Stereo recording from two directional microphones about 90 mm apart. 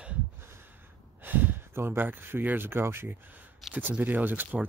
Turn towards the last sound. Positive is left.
turn(degrees=-20)  # may be behind; listen again after turning